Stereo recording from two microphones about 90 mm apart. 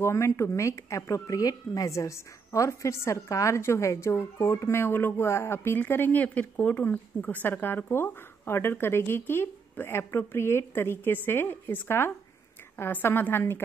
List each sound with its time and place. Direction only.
0.0 s speech: 30° left (ahead or behind)